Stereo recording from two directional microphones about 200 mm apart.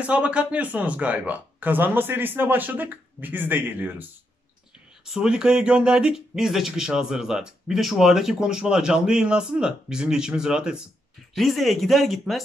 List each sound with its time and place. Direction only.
0.0 s speech: 5° right (ahead or behind)
5.0 s speech: 5° right (ahead or behind)